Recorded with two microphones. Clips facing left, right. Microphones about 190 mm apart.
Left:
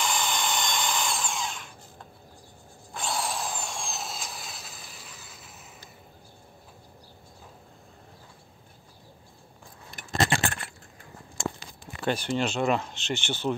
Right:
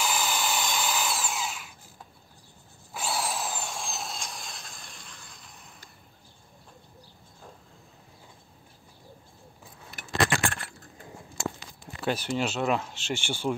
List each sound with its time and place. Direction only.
0.0 s drill: 5° right (ahead or behind)
10.1 s keys jangling: 20° left (ahead or behind)
12.0 s speech: 5° right (ahead or behind)